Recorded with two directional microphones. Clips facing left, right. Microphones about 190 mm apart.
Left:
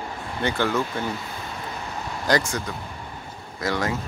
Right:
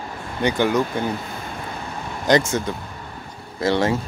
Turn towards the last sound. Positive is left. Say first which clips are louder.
# right 6 dB
turn(degrees=-30)  # may be behind; listen again after turning